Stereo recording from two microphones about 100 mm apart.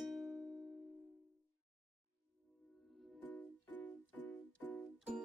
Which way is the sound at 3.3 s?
15° left (ahead or behind).